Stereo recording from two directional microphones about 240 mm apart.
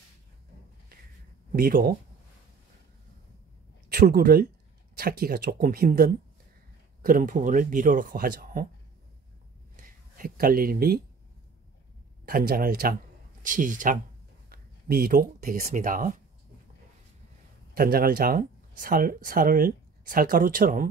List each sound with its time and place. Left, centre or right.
1.5 s speech: right
3.9 s speech: right
9.8 s a sound: right
12.3 s speech: right
17.7 s speech: right